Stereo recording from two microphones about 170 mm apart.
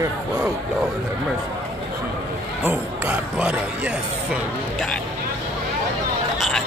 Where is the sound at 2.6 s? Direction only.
10° right (ahead or behind).